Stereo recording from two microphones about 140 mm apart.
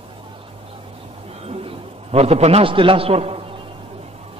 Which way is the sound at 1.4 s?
45° right (ahead or behind).